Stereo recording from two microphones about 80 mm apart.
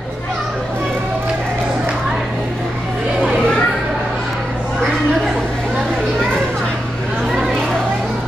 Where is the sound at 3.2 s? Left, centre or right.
Centre.